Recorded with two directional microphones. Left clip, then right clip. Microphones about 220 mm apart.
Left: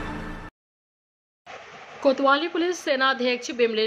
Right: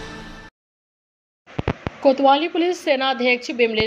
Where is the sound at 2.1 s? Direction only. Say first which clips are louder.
Right 5 dB; centre (ahead or behind).